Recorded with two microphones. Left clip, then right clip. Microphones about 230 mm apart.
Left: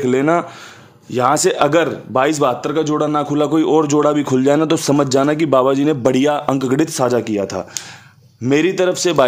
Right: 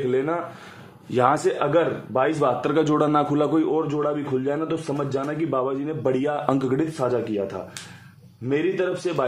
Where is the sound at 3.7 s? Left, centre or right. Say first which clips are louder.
Left 10 dB; left.